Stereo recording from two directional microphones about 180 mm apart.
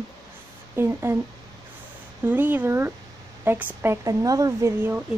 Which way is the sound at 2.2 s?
10° right (ahead or behind).